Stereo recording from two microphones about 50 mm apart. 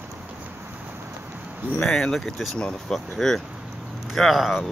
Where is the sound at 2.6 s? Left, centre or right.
Centre.